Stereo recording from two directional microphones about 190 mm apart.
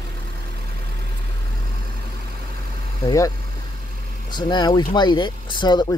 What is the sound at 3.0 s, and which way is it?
Speech, 15° left (ahead or behind).